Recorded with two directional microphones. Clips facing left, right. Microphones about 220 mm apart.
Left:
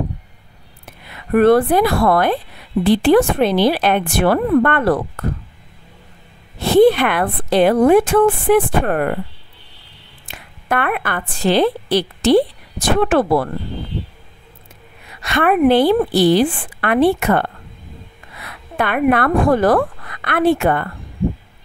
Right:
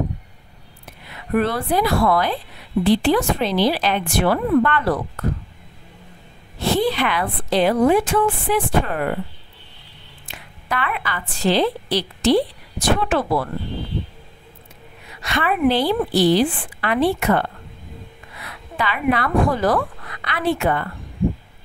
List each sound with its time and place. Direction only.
1.3 s speech: 55° left (ahead or behind)
6.6 s speech: 55° left (ahead or behind)
10.2 s a woman's voice: 55° left (ahead or behind)
15.2 s speech: 55° left (ahead or behind)